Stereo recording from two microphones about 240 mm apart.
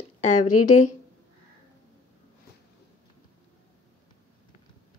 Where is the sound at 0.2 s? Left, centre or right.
Left.